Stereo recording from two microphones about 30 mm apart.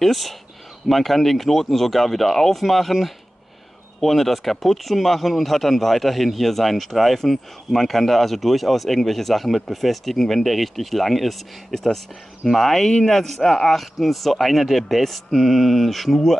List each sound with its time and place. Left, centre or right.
0.0 s speech: centre